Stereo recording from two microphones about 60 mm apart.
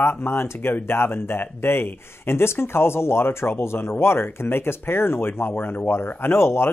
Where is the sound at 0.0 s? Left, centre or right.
Left.